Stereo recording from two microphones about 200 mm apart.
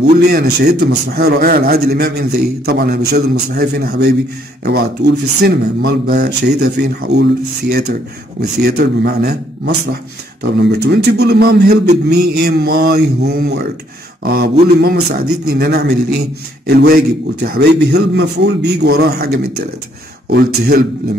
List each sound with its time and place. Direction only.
0.0 s a man's voice: 55° right (ahead or behind)
8.4 s a man's voice: 50° right (ahead or behind)
10.4 s a man's voice: 55° right (ahead or behind)